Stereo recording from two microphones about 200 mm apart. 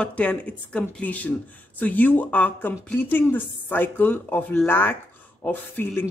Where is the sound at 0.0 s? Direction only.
5° left (ahead or behind).